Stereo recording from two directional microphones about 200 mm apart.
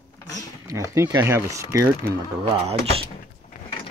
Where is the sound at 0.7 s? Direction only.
15° right (ahead or behind).